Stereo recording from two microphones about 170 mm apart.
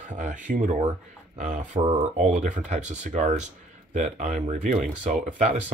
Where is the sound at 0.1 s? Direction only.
50° right (ahead or behind).